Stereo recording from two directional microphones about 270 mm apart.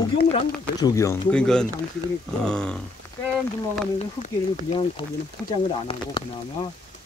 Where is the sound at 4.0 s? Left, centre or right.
Left.